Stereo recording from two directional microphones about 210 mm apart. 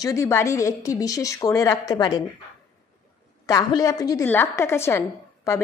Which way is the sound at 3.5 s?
15° left (ahead or behind).